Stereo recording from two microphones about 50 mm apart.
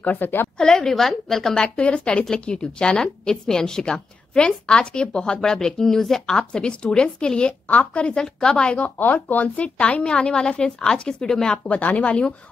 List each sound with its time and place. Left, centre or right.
0.0 s a woman's voice: left
0.6 s a woman's voice: centre
7.6 s a woman's voice: left
8.2 s a woman's voice: centre
8.7 s a woman's voice: left; by 11.5 s centre
11.5 s a woman's voice: left